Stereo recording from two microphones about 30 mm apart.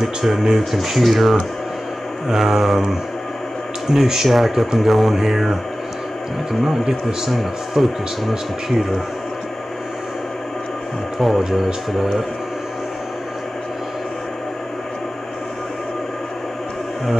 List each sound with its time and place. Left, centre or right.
0.0 s speech: centre
3.9 s speech: centre
4.3 s speech: centre
5.1 s music: centre
6.6 s music: centre
7.2 s speech: centre
11.1 s speech: centre